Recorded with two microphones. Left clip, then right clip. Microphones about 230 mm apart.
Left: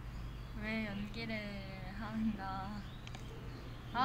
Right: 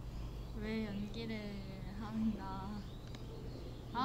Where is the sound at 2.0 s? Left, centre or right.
Centre.